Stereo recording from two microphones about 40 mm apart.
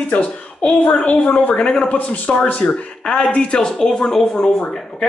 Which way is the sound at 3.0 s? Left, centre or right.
Centre.